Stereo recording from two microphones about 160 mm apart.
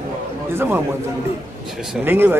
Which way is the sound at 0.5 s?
10° right (ahead or behind).